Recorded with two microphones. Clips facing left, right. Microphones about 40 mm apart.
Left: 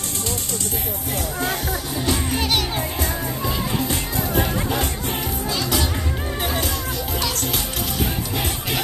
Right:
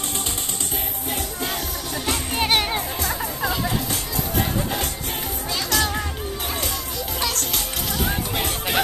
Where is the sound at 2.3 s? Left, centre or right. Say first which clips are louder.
Right 5 dB; right.